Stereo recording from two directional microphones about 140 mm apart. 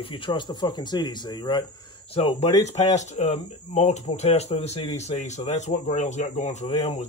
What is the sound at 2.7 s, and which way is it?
Speech, 55° left (ahead or behind).